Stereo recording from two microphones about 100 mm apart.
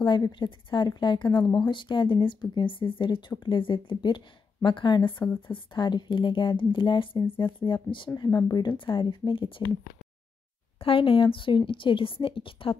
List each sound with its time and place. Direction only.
0.0 s speech: 50° left (ahead or behind)
8.4 s speech: 45° left (ahead or behind)
10.8 s a woman's voice: 65° left (ahead or behind)